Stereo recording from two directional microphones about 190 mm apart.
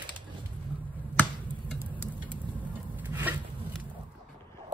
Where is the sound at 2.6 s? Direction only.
10° right (ahead or behind).